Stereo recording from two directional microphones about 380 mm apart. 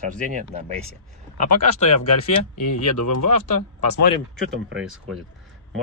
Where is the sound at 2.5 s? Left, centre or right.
Left.